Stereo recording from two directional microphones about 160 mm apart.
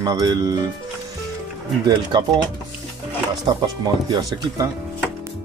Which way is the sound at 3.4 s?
25° right (ahead or behind).